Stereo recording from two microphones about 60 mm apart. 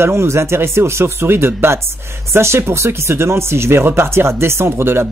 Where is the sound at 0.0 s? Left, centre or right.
Right.